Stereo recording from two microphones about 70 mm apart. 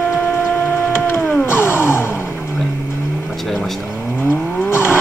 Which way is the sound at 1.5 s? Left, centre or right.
Left.